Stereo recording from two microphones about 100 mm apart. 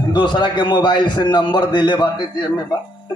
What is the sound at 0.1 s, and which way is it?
Speech, 50° left (ahead or behind).